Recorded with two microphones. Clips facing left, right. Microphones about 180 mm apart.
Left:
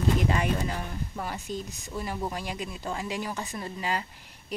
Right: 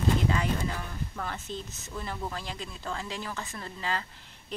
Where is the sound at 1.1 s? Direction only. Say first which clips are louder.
Left 3 dB; 10° left (ahead or behind).